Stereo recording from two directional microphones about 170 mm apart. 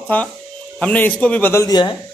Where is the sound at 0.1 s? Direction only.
10° left (ahead or behind).